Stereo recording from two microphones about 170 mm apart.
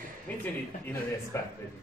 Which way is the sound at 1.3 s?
15° left (ahead or behind).